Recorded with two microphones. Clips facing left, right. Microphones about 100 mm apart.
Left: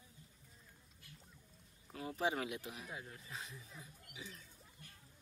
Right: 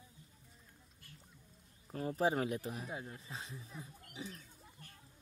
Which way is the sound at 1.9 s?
40° right (ahead or behind).